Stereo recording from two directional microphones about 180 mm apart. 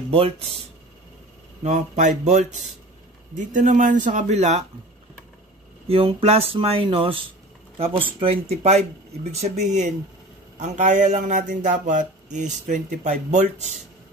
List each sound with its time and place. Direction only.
0.1 s speech: 30° right (ahead or behind)
1.6 s speech: 45° right (ahead or behind)
5.9 s speech: 30° right (ahead or behind)